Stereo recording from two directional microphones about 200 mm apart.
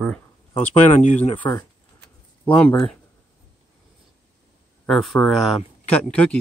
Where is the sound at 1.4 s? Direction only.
15° left (ahead or behind).